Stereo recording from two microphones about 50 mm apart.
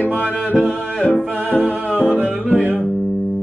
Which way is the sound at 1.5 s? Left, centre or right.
Left.